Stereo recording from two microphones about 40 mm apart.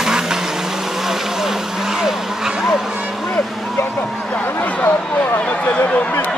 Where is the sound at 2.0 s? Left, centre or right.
Centre.